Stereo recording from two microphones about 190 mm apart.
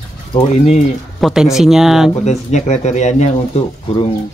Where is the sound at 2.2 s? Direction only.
35° left (ahead or behind).